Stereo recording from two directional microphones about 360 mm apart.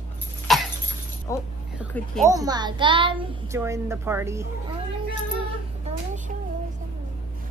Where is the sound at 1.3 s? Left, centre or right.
Centre.